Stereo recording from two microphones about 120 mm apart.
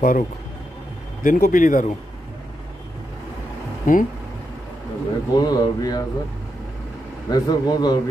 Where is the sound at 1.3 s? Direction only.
90° left.